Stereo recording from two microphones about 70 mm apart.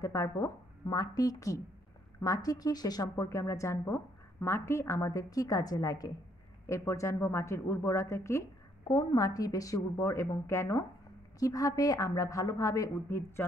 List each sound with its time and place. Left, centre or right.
0.0 s a woman's voice: left
0.8 s a woman's voice: left
3.2 s a woman's voice: left
6.9 s a woman's voice: left
8.8 s a woman's voice: left
11.3 s a woman's voice: left